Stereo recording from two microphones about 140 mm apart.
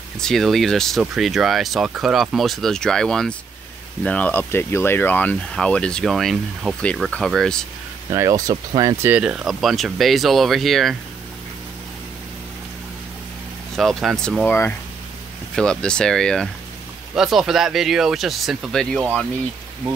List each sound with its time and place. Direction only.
0.2 s speech: centre (ahead or behind)
8.1 s speech: 25° right (ahead or behind)
9.1 s speech: 5° right (ahead or behind)
13.7 s speech: centre (ahead or behind)
15.5 s speech: 5° left (ahead or behind)